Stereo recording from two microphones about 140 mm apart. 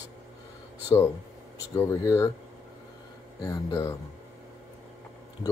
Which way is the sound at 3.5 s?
25° left (ahead or behind).